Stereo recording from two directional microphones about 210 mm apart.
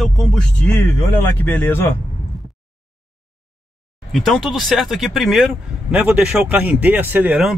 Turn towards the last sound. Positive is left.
turn(degrees=-5)  # may be behind; listen again after turning